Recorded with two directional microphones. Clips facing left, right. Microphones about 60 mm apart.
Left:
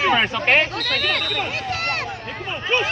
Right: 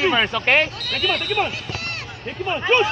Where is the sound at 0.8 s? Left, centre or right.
Left.